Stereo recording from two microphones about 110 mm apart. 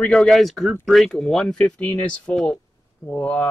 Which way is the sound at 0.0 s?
10° left (ahead or behind).